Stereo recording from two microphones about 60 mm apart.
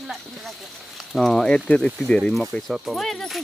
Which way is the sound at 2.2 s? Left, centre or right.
Centre.